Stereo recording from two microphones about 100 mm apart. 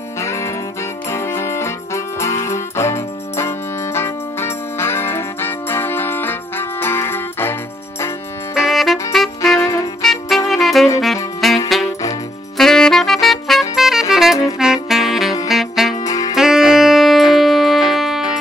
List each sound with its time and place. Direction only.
0.2 s music: 30° left (ahead or behind)
8.5 s music: centre (ahead or behind)
9.6 s music: 30° left (ahead or behind)
10.5 s saxophone: centre (ahead or behind)
11.4 s music: centre (ahead or behind)
12.5 s saxophone: 5° left (ahead or behind)
15.4 s music: centre (ahead or behind)
16.0 s saxophone: 35° left (ahead or behind)
16.3 s saxophone: 5° right (ahead or behind)
17.3 s music: centre (ahead or behind)